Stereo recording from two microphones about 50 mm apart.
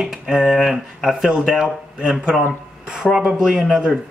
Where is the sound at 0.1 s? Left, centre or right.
Centre.